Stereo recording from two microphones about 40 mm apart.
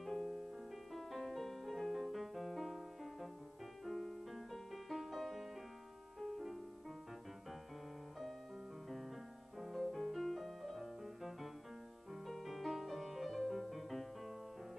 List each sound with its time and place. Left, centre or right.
0.0 s music: centre
9.6 s music: centre